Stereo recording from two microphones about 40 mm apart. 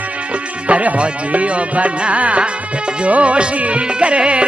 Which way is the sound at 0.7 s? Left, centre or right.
Right.